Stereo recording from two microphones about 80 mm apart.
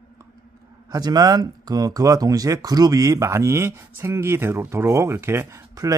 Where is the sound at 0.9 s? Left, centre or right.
Right.